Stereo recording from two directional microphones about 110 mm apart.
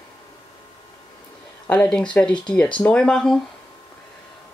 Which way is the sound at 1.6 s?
10° left (ahead or behind).